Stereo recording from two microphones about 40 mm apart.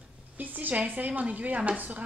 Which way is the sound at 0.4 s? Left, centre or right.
Right.